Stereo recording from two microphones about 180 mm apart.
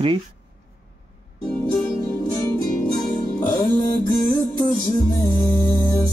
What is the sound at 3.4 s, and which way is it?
Music, 20° left (ahead or behind).